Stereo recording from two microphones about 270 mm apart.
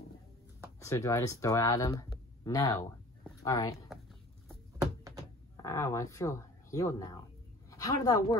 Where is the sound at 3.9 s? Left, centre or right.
Centre.